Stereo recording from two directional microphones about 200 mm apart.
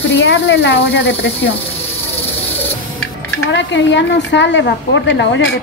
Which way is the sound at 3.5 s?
65° left (ahead or behind).